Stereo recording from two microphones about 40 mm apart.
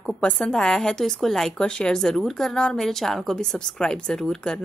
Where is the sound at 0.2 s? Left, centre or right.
Left.